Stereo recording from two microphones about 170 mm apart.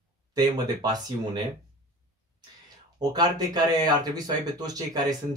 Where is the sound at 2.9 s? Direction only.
25° right (ahead or behind).